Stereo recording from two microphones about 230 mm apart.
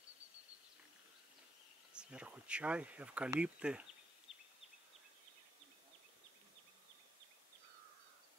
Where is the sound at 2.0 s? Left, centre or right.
Centre.